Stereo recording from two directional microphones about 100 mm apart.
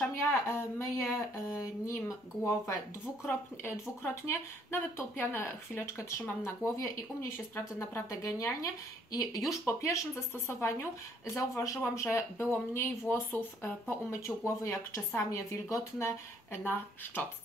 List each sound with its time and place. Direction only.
0.1 s speech: 25° left (ahead or behind)